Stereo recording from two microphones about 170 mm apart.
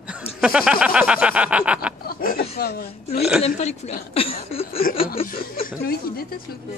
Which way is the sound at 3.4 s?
40° left (ahead or behind).